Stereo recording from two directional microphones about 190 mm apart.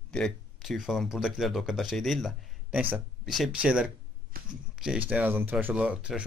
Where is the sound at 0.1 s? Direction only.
Centre (ahead or behind).